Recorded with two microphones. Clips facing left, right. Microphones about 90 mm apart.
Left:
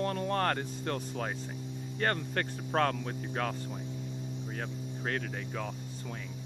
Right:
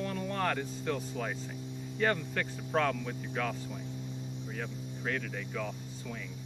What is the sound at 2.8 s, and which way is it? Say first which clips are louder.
Speech: left 1 dB; 45° left (ahead or behind).